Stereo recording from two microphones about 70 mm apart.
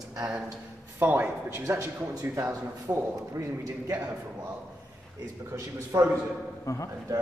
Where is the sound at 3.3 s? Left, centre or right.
Right.